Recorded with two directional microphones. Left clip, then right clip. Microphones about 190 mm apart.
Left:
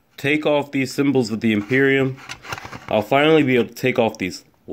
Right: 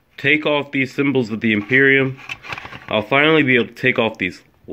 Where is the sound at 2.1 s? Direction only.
25° left (ahead or behind).